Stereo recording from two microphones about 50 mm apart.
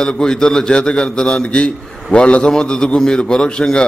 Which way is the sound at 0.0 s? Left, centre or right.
Centre.